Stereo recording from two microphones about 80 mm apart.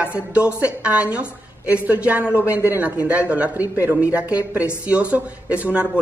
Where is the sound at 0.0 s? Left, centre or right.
Centre.